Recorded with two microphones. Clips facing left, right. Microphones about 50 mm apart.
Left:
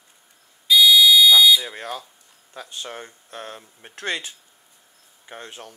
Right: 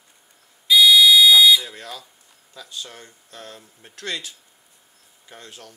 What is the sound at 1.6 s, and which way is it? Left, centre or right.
Speech, left.